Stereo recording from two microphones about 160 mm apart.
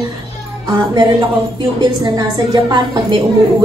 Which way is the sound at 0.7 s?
30° right (ahead or behind).